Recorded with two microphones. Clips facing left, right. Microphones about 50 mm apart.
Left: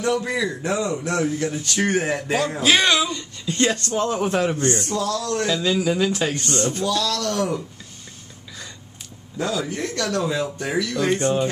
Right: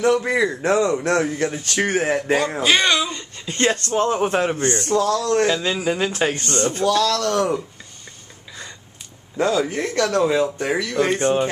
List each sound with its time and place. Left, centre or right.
0.0 s speech: right
1.6 s speech: right
2.6 s speech: centre
3.1 s speech: right
9.4 s speech: right